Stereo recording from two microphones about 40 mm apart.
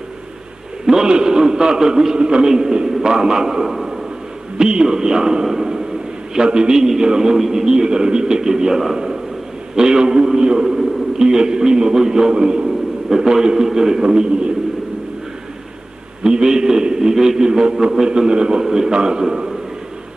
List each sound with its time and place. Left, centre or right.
0.8 s a man's voice: centre
4.6 s a man's voice: centre
16.2 s a man's voice: right
17.1 s a man's voice: centre
17.4 s a man's voice: centre